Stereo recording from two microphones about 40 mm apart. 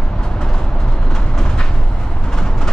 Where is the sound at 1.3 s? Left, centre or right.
Centre.